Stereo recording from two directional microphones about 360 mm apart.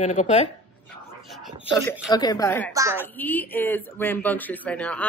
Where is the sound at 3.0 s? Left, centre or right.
Centre.